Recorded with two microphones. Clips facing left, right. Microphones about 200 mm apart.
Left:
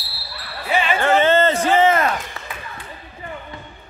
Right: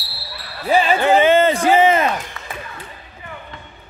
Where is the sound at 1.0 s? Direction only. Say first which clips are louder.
Right 1 dB; 15° right (ahead or behind).